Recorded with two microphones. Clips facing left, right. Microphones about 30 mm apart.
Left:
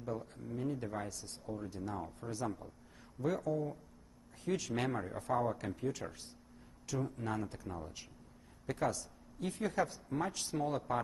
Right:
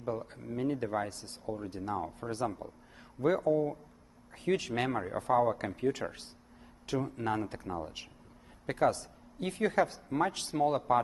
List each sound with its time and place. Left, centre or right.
0.0 s speech: right